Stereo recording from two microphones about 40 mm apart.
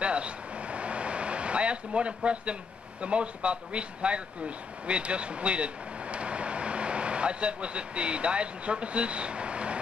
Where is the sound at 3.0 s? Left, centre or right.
Right.